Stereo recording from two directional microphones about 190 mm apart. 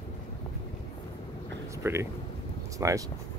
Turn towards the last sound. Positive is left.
turn(degrees=-15)  # may be behind; listen again after turning